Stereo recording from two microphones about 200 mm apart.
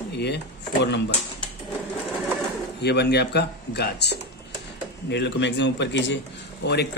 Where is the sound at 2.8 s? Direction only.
55° left (ahead or behind).